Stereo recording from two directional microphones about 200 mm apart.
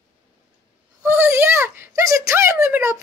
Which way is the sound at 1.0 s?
10° right (ahead or behind).